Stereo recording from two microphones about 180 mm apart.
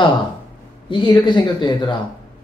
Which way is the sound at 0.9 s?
25° left (ahead or behind).